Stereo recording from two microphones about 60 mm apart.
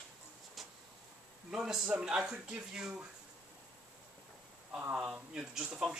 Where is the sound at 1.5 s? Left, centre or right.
Centre.